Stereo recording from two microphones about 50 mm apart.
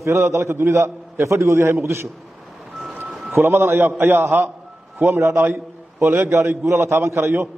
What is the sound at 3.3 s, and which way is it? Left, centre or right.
A man's voice, right.